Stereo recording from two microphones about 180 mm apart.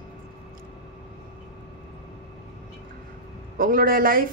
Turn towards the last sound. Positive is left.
turn(degrees=-50)  # may be behind; listen again after turning